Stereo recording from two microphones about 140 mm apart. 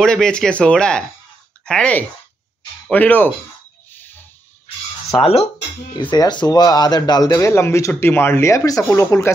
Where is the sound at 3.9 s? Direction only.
15° left (ahead or behind).